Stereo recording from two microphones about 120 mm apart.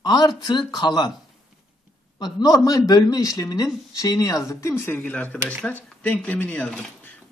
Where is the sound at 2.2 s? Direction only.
30° left (ahead or behind).